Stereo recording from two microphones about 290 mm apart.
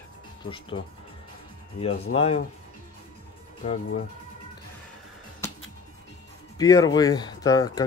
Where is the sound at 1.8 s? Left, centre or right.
Centre.